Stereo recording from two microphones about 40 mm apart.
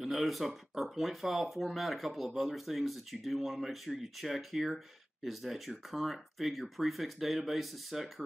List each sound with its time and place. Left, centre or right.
0.0 s speech: centre